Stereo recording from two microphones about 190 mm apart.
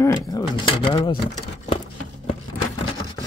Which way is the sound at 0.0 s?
20° left (ahead or behind).